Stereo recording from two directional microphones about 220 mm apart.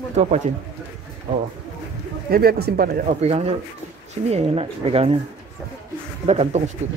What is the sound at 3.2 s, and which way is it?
Speech, 30° right (ahead or behind).